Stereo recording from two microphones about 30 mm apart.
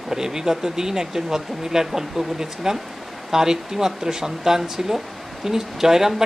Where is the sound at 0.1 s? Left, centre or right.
Centre.